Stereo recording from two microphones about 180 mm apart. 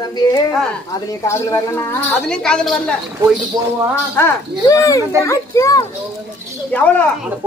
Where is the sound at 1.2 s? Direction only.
15° left (ahead or behind).